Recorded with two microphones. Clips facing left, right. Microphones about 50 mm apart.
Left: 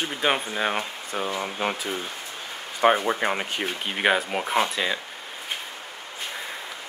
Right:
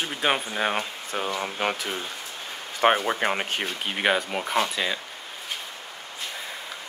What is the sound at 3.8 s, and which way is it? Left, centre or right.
Speech, centre.